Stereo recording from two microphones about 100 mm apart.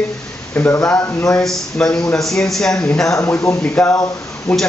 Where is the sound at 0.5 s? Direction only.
20° left (ahead or behind).